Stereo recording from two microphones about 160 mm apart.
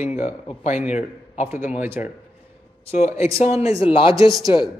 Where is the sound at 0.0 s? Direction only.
45° left (ahead or behind).